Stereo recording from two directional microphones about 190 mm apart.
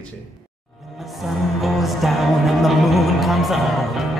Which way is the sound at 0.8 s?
Centre (ahead or behind).